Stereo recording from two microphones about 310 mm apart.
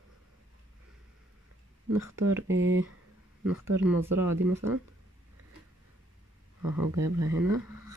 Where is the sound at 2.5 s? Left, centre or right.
Right.